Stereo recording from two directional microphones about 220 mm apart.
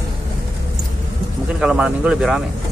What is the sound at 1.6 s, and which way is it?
Speech, 5° right (ahead or behind).